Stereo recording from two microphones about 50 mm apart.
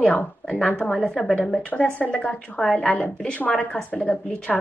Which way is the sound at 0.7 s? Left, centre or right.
Left.